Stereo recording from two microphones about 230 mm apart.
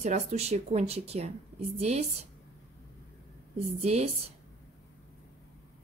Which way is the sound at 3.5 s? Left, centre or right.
Right.